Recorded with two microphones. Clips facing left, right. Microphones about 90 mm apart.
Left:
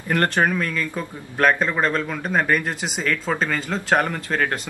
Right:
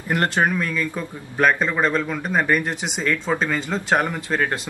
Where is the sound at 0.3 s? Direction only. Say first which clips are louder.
Even; 5° right (ahead or behind).